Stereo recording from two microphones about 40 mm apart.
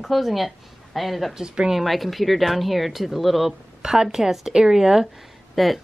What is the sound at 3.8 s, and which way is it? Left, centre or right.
A woman's voice, centre.